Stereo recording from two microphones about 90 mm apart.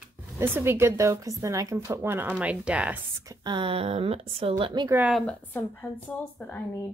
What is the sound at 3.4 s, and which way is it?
Speech, 65° right (ahead or behind).